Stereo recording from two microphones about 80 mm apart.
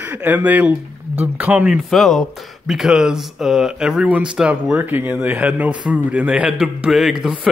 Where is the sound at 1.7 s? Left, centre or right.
Centre.